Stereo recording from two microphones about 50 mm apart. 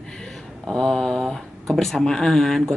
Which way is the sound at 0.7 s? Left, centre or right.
Centre.